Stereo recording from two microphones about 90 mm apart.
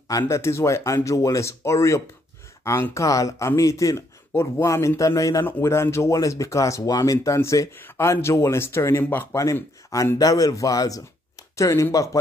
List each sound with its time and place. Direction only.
0.3 s speech: 30° left (ahead or behind)
9.4 s speech: 40° left (ahead or behind)